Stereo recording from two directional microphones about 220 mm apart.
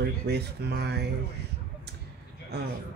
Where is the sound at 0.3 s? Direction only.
50° right (ahead or behind).